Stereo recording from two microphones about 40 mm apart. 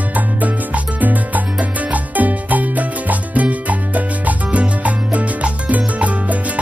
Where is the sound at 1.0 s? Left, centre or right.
Right.